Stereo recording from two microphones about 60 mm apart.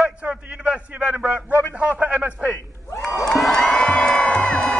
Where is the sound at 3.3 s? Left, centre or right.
Centre.